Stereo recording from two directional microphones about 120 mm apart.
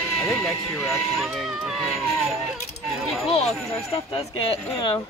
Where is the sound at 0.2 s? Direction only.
Centre (ahead or behind).